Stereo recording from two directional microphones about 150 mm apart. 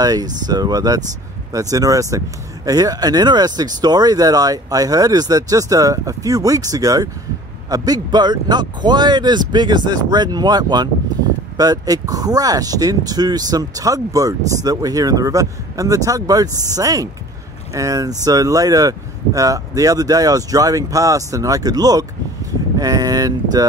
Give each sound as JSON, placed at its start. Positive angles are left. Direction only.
{"t": 0.0, "sound": "speech", "side_deg": -25}